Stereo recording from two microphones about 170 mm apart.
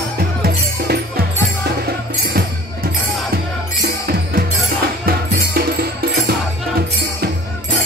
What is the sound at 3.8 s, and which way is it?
Music, 65° right (ahead or behind).